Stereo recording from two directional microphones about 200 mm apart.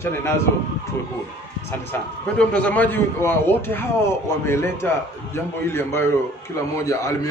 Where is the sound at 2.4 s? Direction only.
5° left (ahead or behind).